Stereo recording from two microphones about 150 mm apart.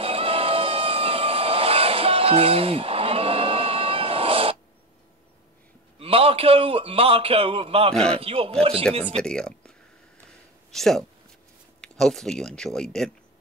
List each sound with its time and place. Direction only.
0.0 s a sound: 40° right (ahead or behind)
5.9 s a man's voice: 40° right (ahead or behind)
7.9 s speech: 5° left (ahead or behind)
8.2 s a man's voice: 40° right (ahead or behind)
9.0 s speech: 5° left (ahead or behind)
10.7 s speech: centre (ahead or behind)